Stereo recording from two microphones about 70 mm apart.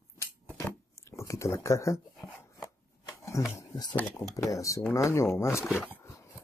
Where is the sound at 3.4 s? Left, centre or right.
Left.